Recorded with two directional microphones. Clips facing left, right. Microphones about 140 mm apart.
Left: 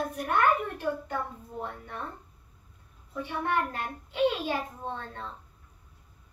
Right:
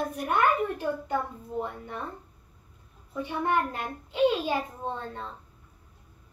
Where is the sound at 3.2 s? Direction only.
15° right (ahead or behind).